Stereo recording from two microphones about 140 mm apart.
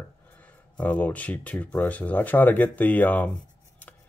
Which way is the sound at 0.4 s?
10° left (ahead or behind).